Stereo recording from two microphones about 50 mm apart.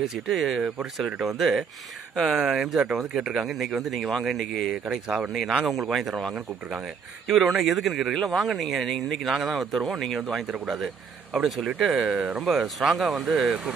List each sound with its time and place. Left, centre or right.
0.1 s speech: centre
4.8 s speech: centre
5.3 s speech: centre
12.9 s speech: centre